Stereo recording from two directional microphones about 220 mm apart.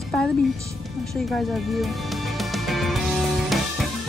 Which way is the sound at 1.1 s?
Centre (ahead or behind).